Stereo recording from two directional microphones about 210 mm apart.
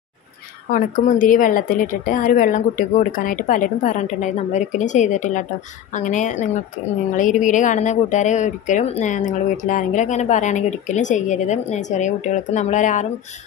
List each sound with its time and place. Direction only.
0.7 s a woman's voice: 40° left (ahead or behind)